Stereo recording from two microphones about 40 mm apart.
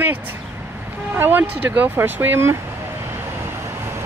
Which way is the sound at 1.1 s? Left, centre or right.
Right.